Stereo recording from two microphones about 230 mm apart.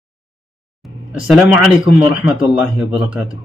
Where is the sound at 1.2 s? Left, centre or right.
Centre.